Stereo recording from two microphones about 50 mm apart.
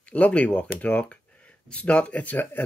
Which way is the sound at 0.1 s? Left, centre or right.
Left.